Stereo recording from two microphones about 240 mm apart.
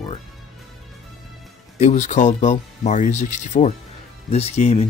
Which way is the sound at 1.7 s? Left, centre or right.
Left.